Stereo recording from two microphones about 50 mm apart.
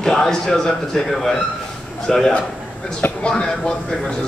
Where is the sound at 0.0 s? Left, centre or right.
Centre.